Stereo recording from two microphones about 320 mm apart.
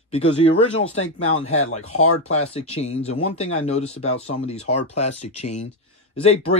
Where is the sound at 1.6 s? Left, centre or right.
Left.